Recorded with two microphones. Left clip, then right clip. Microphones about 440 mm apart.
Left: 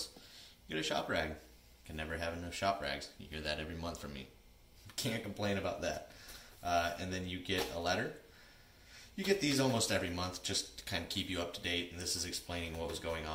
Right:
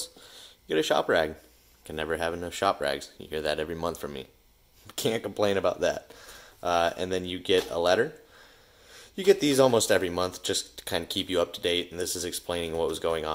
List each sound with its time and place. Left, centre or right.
0.3 s a sound: centre
2.0 s speech: centre
9.3 s speech: centre